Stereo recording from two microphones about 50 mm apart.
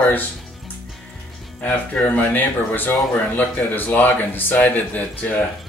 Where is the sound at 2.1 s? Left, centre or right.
Left.